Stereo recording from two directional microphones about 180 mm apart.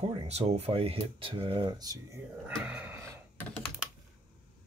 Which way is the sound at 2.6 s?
10° right (ahead or behind).